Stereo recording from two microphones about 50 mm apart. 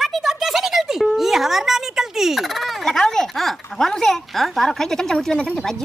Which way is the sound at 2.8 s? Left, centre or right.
Centre.